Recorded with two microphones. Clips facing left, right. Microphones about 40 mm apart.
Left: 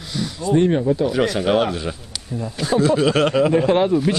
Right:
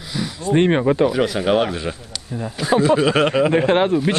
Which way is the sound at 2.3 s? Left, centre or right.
Right.